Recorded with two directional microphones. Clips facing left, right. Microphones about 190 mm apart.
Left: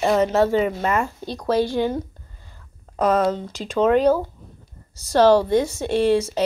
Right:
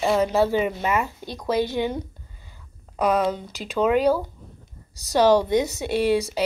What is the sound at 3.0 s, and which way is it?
A woman's voice, 10° right (ahead or behind).